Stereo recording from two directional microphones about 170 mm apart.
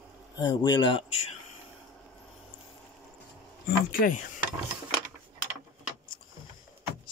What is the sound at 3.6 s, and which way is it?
Speech, 55° left (ahead or behind).